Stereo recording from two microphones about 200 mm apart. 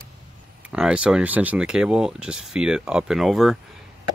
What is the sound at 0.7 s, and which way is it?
Speech, 5° right (ahead or behind).